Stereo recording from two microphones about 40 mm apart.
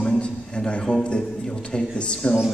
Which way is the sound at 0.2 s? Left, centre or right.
Left.